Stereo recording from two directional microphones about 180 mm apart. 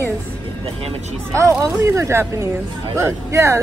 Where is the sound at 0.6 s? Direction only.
35° right (ahead or behind).